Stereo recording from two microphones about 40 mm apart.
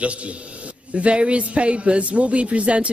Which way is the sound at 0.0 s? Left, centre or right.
Right.